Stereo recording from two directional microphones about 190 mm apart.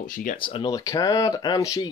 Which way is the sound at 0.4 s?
25° left (ahead or behind).